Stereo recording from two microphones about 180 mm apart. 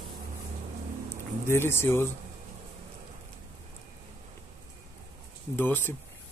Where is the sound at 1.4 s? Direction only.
15° left (ahead or behind).